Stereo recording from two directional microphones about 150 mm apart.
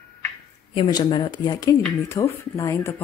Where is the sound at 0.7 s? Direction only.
30° left (ahead or behind).